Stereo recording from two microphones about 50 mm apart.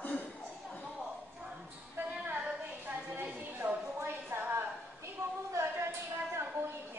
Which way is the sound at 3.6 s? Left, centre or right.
Right.